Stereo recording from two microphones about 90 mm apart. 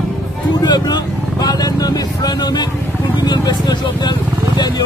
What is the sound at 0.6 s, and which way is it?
Speech, 50° left (ahead or behind).